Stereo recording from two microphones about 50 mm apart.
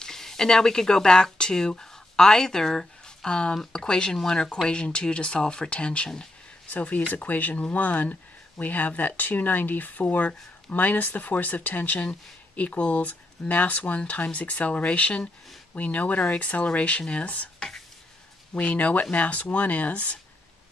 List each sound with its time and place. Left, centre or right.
0.0 s speech: centre
6.7 s speech: left